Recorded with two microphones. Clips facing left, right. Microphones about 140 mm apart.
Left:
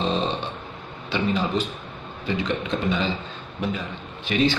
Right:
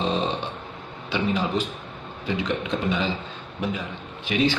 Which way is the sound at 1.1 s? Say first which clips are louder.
Left 1 dB; 5° right (ahead or behind).